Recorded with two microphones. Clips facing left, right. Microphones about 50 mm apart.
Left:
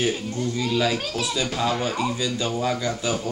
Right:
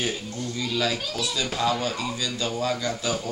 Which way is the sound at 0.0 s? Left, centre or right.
Centre.